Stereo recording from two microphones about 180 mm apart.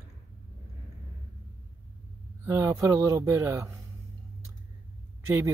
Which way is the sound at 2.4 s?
15° right (ahead or behind).